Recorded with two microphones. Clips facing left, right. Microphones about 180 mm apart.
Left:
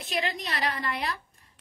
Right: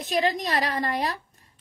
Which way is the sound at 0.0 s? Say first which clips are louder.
Right 7 dB; 40° right (ahead or behind).